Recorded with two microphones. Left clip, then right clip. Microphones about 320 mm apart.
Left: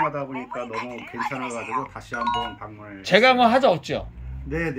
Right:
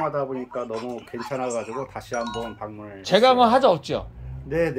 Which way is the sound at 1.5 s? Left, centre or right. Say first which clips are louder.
Left 1 dB; right.